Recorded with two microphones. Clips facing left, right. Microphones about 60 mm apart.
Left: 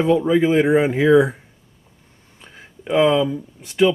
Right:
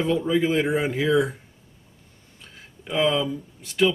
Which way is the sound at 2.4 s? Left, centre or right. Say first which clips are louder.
Left 5 dB; left.